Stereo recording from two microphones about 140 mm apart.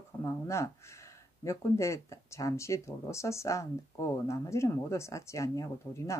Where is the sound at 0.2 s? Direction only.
20° left (ahead or behind).